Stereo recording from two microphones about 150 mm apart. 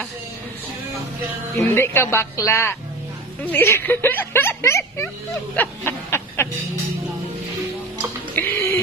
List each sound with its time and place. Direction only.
1.8 s speech: 15° left (ahead or behind)
5.6 s snicker: 15° left (ahead or behind)
8.4 s music: 15° left (ahead or behind)